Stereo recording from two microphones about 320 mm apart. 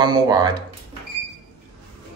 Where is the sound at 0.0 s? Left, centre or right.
Centre.